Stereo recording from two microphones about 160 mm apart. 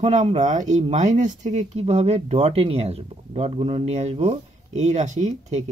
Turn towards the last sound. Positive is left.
turn(degrees=-45)  # may be behind; listen again after turning